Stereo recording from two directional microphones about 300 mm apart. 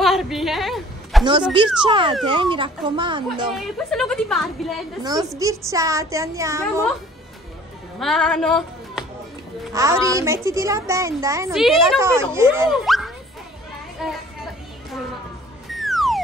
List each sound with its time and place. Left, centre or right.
0.0 s a sound: centre
1.8 s a child's voice: centre
3.5 s a woman's voice: centre
5.0 s a child's voice: centre
8.0 s speech: centre
9.8 s a child's voice: centre
14.0 s children playing: centre
15.7 s a sound: centre